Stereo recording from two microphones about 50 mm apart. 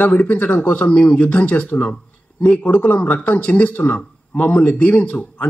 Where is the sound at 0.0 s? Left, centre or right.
Left.